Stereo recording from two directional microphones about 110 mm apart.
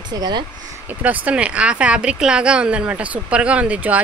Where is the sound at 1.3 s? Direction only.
10° right (ahead or behind).